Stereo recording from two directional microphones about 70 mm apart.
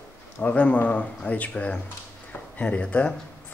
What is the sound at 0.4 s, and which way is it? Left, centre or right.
Speech, left.